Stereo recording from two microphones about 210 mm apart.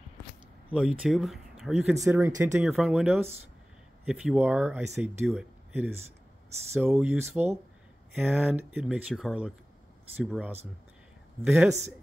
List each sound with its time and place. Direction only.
0.7 s speech: 5° right (ahead or behind)
2.0 s speech: 10° right (ahead or behind)
2.6 s speech: centre (ahead or behind)